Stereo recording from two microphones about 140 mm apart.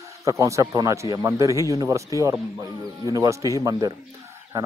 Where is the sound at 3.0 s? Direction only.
25° right (ahead or behind).